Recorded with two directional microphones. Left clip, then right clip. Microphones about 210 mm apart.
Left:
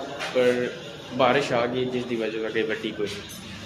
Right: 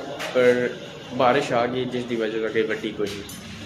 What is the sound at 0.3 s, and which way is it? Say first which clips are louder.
Speech: right 3 dB; 10° right (ahead or behind).